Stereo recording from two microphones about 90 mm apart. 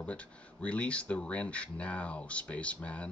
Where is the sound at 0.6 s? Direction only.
15° left (ahead or behind).